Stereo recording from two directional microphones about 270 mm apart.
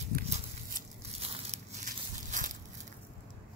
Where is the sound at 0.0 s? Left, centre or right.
Right.